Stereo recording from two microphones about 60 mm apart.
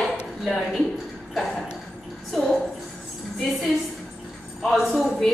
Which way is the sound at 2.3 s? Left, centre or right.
Centre.